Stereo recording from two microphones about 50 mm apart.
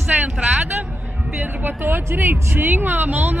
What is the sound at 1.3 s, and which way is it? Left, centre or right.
Speech, right.